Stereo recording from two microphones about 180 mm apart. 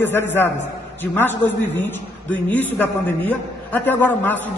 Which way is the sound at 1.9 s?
10° left (ahead or behind).